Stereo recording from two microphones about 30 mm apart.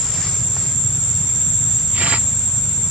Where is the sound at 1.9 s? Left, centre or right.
Right.